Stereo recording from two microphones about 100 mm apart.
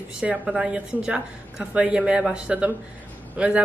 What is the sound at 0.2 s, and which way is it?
A woman's voice, 10° right (ahead or behind).